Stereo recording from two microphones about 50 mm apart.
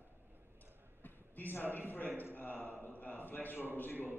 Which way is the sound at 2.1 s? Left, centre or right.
Right.